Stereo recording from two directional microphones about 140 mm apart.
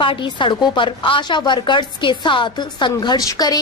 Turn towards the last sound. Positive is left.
turn(degrees=25)  # may be behind; listen again after turning